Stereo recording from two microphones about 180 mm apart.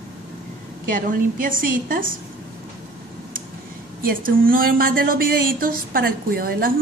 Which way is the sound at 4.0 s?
50° right (ahead or behind).